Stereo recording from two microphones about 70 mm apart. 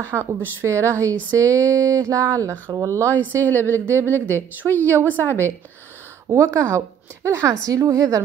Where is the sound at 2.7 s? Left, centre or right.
Right.